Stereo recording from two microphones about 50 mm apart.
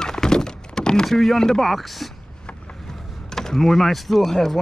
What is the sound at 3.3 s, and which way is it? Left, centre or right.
Speech, centre.